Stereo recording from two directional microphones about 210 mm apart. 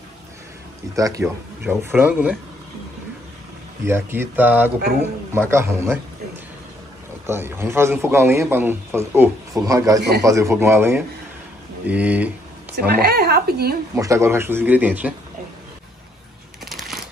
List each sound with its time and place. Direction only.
0.9 s a man's voice: 15° right (ahead or behind)
3.8 s a man's voice: 10° right (ahead or behind)
7.2 s a man's voice: 10° right (ahead or behind)
9.9 s a man's voice: 50° right (ahead or behind)
10.2 s a man's voice: 15° right (ahead or behind)
12.8 s a sound: 45° right (ahead or behind)
13.9 s a man's voice: 15° right (ahead or behind)
16.6 s a sound: centre (ahead or behind)